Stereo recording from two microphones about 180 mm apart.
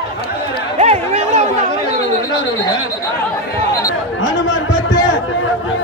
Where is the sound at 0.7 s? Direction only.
40° right (ahead or behind).